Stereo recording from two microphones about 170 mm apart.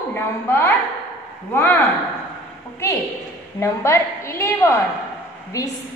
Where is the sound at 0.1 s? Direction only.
15° left (ahead or behind).